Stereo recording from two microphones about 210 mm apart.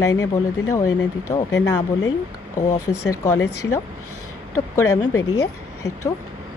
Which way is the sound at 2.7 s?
90° left.